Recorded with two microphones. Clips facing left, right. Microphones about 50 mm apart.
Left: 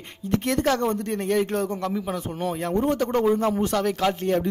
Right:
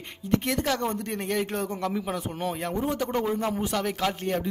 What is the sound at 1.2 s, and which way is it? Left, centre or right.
Speech, right.